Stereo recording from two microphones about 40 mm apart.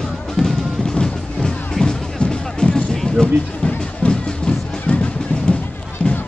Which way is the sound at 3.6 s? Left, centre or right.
Left.